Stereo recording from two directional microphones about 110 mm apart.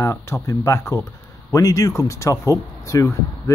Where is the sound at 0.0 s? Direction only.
25° left (ahead or behind).